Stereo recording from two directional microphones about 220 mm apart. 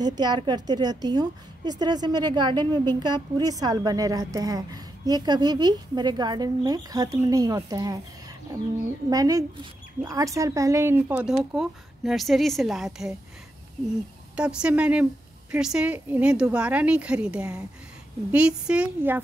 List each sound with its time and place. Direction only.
0.0 s a woman's voice: 20° right (ahead or behind); by 13.1 s centre (ahead or behind)
14.3 s speech: 5° right (ahead or behind)